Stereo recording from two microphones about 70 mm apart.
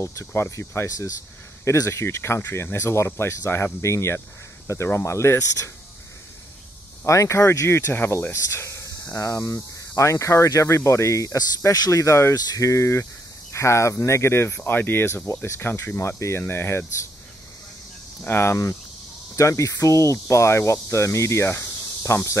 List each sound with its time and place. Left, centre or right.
0.0 s speech: left
0.8 s speech: left
1.9 s speech: left
7.1 s speech: left
18.2 s speech: left
19.3 s speech: left